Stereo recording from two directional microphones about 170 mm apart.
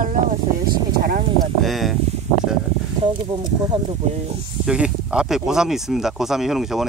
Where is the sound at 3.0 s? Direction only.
30° right (ahead or behind).